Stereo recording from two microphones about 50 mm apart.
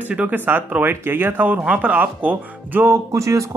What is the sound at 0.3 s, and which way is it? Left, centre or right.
Speech, right.